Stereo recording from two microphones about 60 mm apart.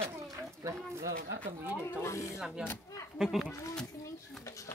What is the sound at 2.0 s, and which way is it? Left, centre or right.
Speech, left.